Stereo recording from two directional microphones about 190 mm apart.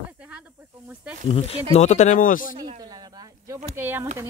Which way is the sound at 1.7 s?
35° left (ahead or behind).